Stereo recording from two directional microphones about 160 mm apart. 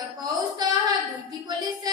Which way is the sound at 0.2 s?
20° right (ahead or behind).